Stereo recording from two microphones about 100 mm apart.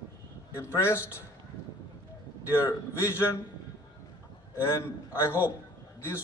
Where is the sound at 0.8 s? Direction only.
25° left (ahead or behind).